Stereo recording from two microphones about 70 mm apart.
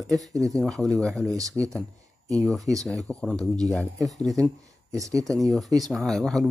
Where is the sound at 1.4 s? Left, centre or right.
Right.